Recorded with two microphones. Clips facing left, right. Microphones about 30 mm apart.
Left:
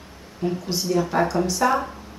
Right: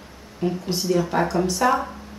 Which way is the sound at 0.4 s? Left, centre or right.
Centre.